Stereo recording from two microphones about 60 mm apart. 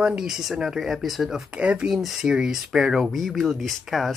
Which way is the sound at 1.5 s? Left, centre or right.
Right.